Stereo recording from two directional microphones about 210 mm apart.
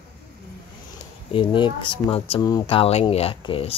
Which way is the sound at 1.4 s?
25° left (ahead or behind).